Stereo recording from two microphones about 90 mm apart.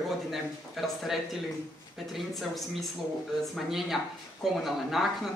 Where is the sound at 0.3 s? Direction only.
5° right (ahead or behind).